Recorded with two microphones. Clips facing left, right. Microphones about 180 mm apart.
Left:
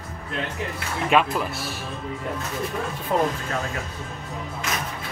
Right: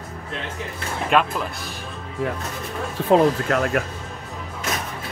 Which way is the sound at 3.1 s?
70° right (ahead or behind).